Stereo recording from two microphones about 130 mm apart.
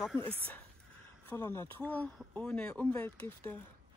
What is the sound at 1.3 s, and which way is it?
Speech, 20° left (ahead or behind).